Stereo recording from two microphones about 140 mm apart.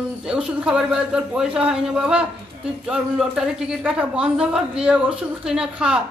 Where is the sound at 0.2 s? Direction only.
5° right (ahead or behind).